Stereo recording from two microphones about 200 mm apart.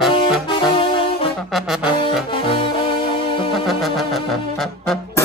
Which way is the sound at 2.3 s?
25° left (ahead or behind).